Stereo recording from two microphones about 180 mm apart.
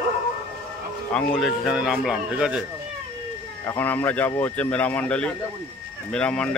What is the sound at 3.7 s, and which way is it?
Speech, 10° left (ahead or behind).